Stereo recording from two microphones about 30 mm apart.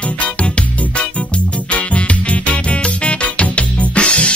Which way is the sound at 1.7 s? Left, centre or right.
Left.